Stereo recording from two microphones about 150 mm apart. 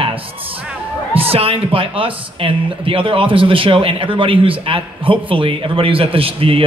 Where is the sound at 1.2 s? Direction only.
40° right (ahead or behind).